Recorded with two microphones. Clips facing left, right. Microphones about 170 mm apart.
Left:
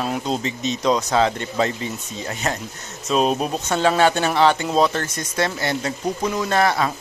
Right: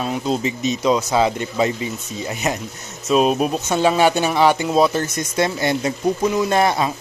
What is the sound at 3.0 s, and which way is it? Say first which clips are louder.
Speech: right 3 dB; 5° right (ahead or behind).